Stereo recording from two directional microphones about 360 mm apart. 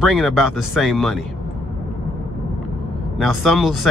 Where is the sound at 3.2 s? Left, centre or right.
Centre.